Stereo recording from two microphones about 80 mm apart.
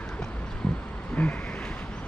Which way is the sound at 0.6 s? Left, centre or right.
Centre.